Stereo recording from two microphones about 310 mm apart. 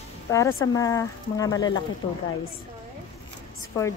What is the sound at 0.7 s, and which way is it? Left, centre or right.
Speech, centre.